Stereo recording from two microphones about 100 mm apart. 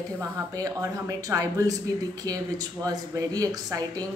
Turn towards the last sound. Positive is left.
turn(degrees=-35)  # may be behind; listen again after turning